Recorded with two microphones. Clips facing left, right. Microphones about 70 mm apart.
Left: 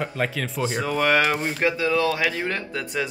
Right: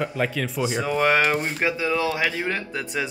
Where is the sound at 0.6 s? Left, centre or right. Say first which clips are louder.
Right 1 dB; centre.